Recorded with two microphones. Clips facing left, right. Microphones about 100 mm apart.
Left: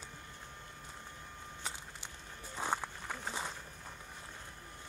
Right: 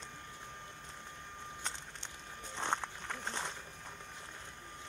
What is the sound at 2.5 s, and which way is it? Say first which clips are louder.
Walk: even; 5° left (ahead or behind).